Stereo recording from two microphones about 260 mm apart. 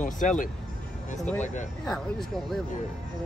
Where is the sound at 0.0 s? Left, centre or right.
Left.